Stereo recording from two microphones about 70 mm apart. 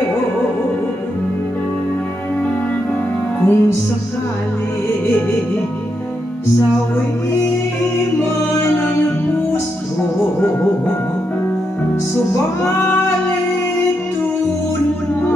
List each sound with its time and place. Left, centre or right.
3.3 s music: left